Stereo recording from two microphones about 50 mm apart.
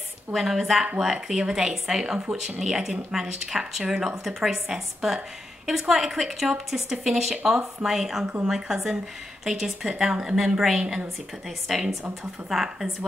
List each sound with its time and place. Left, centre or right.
0.3 s a woman's voice: centre
10.8 s a woman's voice: centre
11.4 s speech: centre